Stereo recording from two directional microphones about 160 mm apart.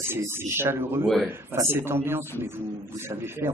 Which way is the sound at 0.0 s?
15° right (ahead or behind).